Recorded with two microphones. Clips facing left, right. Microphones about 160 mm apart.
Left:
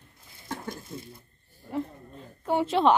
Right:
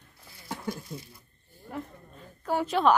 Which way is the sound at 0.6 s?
25° left (ahead or behind).